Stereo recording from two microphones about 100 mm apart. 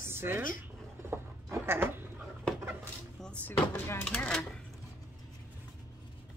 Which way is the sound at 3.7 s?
25° left (ahead or behind).